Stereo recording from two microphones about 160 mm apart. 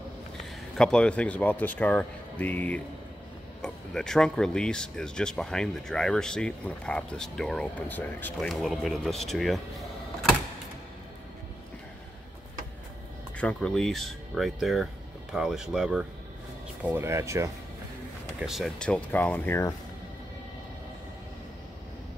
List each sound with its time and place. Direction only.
0.7 s speech: 5° left (ahead or behind)
13.4 s speech: 5° left (ahead or behind)
16.8 s speech: 15° right (ahead or behind)
18.4 s speech: centre (ahead or behind)